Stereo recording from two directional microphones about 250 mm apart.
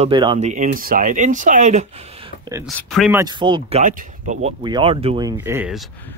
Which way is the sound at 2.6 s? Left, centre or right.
Centre.